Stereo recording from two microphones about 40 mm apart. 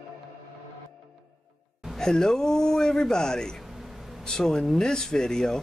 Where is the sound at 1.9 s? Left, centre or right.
Centre.